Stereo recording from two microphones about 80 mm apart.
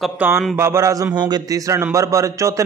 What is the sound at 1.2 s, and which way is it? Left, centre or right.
Speech, right.